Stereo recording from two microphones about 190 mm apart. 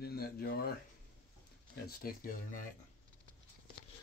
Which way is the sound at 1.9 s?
50° left (ahead or behind).